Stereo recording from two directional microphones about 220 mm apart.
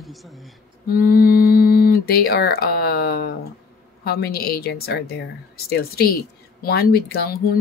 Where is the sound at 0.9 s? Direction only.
40° left (ahead or behind).